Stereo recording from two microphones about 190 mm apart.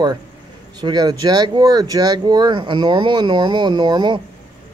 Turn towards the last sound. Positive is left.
turn(degrees=-25)  # may be behind; listen again after turning